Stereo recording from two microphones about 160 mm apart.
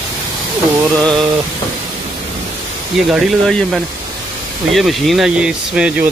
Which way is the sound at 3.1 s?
Centre (ahead or behind).